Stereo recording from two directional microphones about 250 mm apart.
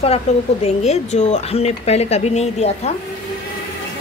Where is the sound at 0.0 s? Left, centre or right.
Left.